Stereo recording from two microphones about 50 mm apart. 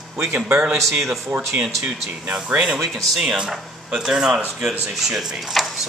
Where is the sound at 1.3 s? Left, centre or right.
Right.